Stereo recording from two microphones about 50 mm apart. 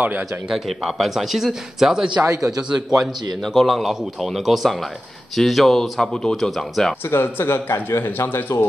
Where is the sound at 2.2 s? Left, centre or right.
Right.